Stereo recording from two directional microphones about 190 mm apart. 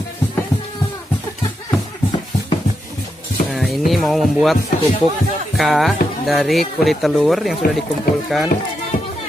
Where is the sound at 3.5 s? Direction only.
Centre (ahead or behind).